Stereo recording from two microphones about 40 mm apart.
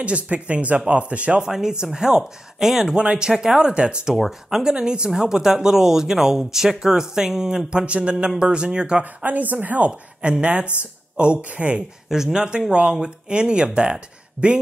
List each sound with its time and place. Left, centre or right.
0.0 s speech: right
1.4 s speech: centre
3.0 s speech: right
4.1 s speech: centre
7.8 s speech: right
9.0 s a woman's voice: right
9.8 s speech: right
12.1 s speech: centre